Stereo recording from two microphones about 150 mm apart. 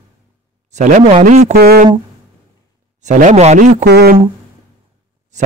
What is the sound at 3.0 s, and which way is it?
Speech, 55° right (ahead or behind).